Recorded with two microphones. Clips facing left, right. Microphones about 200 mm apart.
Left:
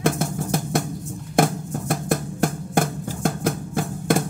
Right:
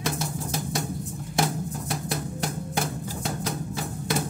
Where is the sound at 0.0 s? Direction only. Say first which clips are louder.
Left 7 dB; 55° left (ahead or behind).